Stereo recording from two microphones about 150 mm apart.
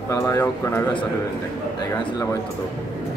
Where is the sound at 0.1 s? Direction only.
20° left (ahead or behind).